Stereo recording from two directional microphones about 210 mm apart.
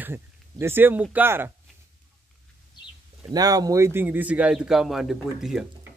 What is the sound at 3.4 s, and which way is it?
Speech, 15° right (ahead or behind).